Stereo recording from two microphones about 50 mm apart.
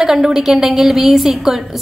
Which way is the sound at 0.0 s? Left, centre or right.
Centre.